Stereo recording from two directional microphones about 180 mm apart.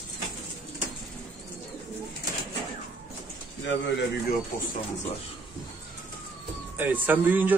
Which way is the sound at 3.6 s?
80° left.